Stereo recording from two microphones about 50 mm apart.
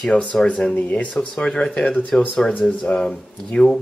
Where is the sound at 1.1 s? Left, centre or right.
Centre.